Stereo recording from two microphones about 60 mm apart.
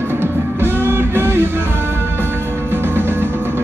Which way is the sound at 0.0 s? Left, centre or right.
Right.